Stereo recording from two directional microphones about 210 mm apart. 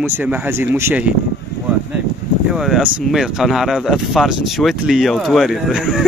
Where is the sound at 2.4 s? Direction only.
Centre (ahead or behind).